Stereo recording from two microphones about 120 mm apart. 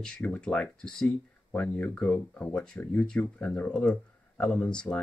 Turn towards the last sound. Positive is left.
turn(degrees=10)  # may be behind; listen again after turning